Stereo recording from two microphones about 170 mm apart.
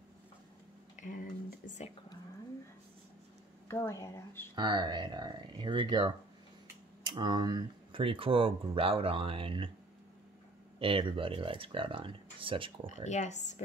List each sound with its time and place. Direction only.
0.9 s a sound: 50° left (ahead or behind)
3.6 s speech: 15° left (ahead or behind)
4.6 s speech: 25° right (ahead or behind)
10.8 s speech: 30° right (ahead or behind)
12.8 s speech: 45° left (ahead or behind)